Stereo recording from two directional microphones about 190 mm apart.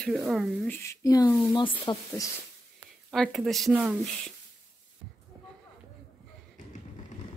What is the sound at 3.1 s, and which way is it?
Speech, centre (ahead or behind).